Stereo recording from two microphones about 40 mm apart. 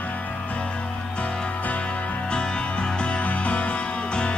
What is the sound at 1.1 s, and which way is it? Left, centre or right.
Music, left.